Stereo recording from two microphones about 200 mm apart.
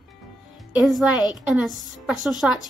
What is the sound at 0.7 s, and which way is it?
Speech, centre (ahead or behind).